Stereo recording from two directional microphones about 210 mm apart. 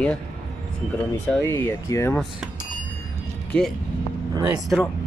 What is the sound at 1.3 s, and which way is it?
Speech, 10° left (ahead or behind).